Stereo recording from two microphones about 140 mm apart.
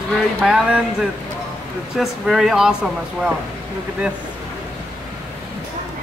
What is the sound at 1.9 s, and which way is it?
Speech, 5° right (ahead or behind).